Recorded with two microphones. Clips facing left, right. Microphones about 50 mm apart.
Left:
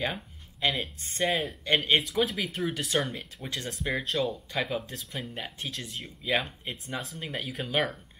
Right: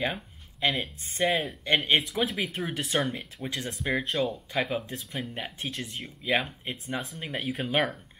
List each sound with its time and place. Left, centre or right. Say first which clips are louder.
0.0 s speech: right 1 dB; centre
2.0 s speech: even; centre
7.6 s speech: right 1 dB; right